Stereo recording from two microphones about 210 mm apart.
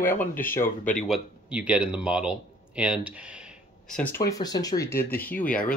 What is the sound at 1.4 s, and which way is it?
Speech, 5° right (ahead or behind).